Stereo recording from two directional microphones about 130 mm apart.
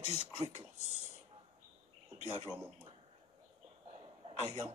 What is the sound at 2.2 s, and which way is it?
Speech, 55° right (ahead or behind).